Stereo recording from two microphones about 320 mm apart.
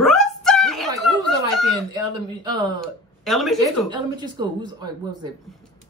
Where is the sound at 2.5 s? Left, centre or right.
Centre.